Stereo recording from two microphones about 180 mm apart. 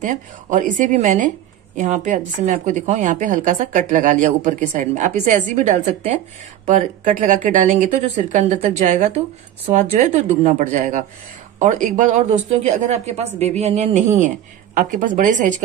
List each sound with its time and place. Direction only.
0.0 s a woman's voice: 45° right (ahead or behind)